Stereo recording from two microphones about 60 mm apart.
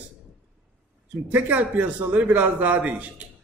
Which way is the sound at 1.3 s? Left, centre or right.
Right.